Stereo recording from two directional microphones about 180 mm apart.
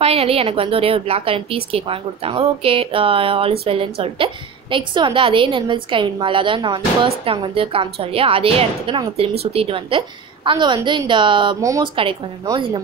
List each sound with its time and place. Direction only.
0.0 s a woman's voice: 35° right (ahead or behind)